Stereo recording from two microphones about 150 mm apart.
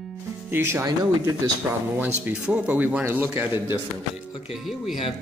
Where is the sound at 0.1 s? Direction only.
15° right (ahead or behind).